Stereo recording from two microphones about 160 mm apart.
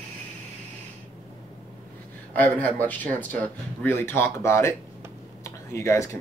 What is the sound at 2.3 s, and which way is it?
Speech, 10° left (ahead or behind).